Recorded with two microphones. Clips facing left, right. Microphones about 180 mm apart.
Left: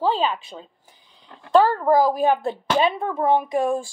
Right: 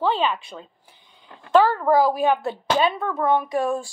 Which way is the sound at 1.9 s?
45° left (ahead or behind).